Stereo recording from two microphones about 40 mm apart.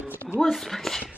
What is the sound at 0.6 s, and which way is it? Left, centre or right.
Speech, centre.